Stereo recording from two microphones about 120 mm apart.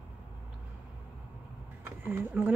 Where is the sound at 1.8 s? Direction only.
15° right (ahead or behind).